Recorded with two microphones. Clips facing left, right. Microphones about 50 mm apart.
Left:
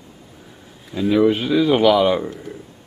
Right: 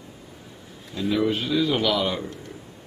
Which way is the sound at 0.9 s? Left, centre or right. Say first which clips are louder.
Left 7 dB; centre.